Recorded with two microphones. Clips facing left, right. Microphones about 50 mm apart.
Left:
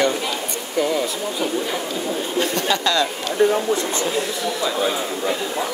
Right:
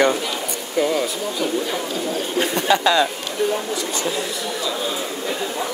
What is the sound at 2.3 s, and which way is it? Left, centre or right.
Speech, centre.